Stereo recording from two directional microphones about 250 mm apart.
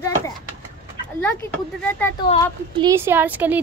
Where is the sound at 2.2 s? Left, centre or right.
Centre.